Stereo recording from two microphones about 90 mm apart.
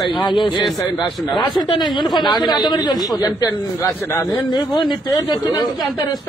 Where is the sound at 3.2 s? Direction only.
40° left (ahead or behind).